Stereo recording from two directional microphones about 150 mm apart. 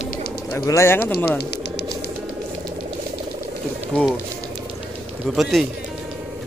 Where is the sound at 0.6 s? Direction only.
20° left (ahead or behind).